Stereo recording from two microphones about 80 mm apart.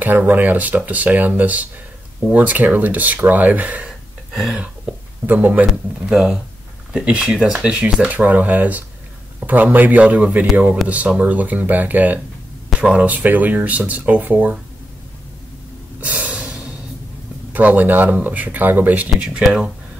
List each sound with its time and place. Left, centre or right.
0.0 s speech: right
4.3 s a sound: centre
4.9 s a sound: centre
5.2 s speech: right
5.7 s speech: centre; by 14.6 s right
16.0 s snort: centre
17.5 s speech: right
19.4 s speech: centre